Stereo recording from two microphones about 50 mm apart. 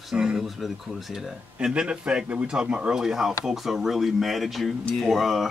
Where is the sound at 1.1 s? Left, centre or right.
Centre.